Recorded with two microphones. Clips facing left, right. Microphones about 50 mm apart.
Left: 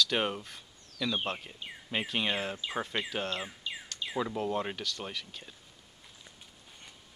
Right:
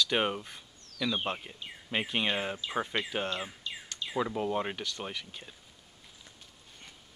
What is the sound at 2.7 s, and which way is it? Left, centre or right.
Bird, centre.